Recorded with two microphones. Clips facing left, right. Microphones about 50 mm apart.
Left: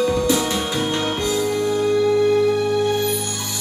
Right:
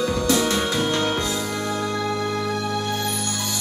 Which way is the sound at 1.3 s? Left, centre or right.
Centre.